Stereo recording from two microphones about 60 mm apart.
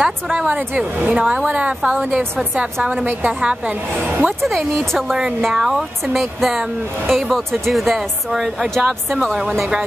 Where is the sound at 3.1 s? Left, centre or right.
Right.